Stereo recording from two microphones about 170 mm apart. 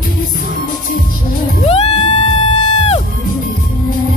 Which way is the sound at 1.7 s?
30° left (ahead or behind).